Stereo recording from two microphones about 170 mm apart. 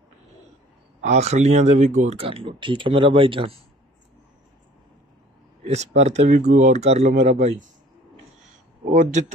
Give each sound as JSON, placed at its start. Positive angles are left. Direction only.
{"t": 1.0, "sound": "speech", "side_deg": -40}
{"t": 5.6, "sound": "speech", "side_deg": -40}
{"t": 8.9, "sound": "speech", "side_deg": -45}